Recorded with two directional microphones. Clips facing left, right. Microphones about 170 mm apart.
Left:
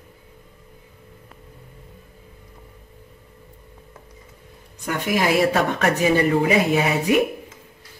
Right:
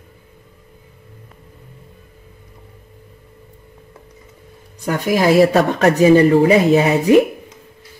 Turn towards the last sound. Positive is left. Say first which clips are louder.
# right 7 dB
turn(degrees=-35)  # may be behind; listen again after turning